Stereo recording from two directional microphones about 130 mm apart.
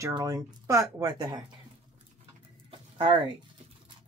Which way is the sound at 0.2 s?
25° right (ahead or behind).